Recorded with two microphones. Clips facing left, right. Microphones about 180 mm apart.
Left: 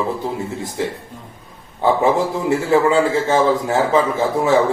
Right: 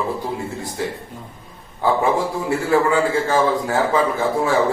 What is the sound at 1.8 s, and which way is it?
A man's voice, 20° left (ahead or behind).